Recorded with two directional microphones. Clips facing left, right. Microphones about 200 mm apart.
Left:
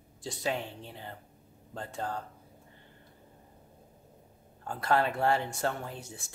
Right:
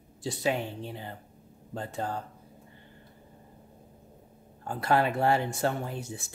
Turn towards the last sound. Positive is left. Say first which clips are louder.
# right 4 dB
turn(degrees=-10)  # may be behind; listen again after turning